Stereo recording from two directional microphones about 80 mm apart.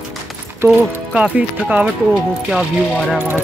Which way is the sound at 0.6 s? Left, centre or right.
Right.